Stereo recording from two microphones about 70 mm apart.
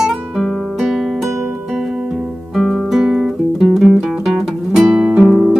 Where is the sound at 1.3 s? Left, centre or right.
Right.